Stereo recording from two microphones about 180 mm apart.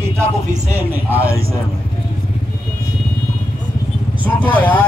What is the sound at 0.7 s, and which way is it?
Speech, 10° right (ahead or behind).